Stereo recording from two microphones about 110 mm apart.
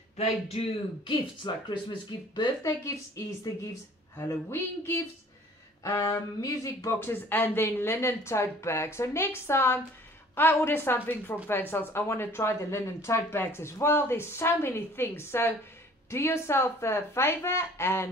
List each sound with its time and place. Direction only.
0.2 s a man's voice: 65° left (ahead or behind)
1.0 s speech: 45° left (ahead or behind)
4.3 s speech: 25° left (ahead or behind)